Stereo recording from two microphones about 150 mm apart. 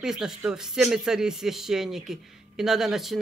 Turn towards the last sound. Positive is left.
turn(degrees=0)  # may be behind; listen again after turning